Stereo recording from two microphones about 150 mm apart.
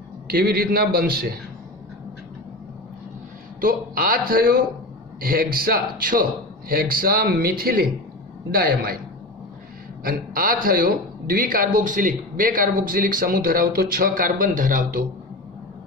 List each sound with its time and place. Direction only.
0.3 s a man's voice: 90° right
3.6 s a man's voice: 75° right (ahead or behind)
10.0 s a man's voice: 75° right (ahead or behind)